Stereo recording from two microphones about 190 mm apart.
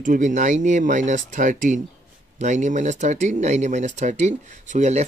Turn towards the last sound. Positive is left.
turn(degrees=-40)  # may be behind; listen again after turning